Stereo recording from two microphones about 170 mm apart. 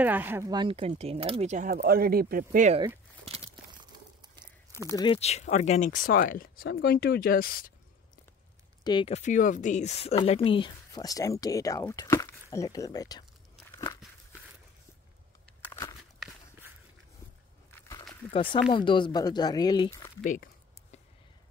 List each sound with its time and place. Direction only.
0.0 s speech: 10° right (ahead or behind)
0.5 s speech: 30° right (ahead or behind); by 2.7 s 55° right (ahead or behind)
3.3 s tearing: 35° right (ahead or behind)
3.9 s a sound: 25° right (ahead or behind)
4.8 s speech: 25° left (ahead or behind); by 7.7 s 60° left (ahead or behind)
8.8 s speech: 25° left (ahead or behind)
9.1 s speech: 45° left (ahead or behind); by 13.2 s 20° left (ahead or behind)
13.7 s biting: 20° left (ahead or behind)
17.6 s a sound: 20° left (ahead or behind)
18.3 s speech: 30° left (ahead or behind)